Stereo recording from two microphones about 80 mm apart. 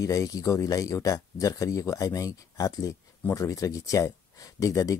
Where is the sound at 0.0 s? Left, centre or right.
Left.